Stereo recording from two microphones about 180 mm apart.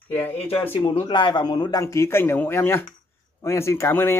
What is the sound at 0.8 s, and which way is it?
A man's voice, 30° left (ahead or behind).